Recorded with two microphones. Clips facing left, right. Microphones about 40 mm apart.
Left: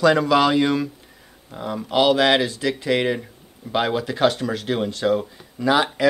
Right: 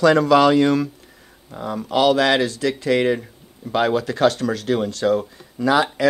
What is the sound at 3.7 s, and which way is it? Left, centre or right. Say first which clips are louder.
Speech: right 3 dB; left.